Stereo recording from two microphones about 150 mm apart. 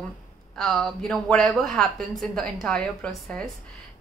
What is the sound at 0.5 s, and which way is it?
A woman's voice, 5° left (ahead or behind).